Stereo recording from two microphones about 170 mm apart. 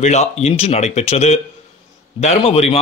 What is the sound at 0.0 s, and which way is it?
A man's voice, 40° left (ahead or behind).